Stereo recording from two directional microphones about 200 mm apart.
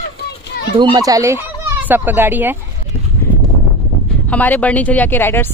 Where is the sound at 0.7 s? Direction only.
20° right (ahead or behind).